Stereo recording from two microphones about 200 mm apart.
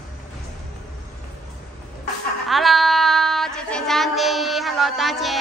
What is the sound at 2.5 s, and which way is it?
Child singing, centre (ahead or behind).